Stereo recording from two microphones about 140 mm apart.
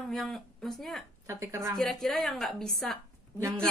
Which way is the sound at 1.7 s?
Centre (ahead or behind).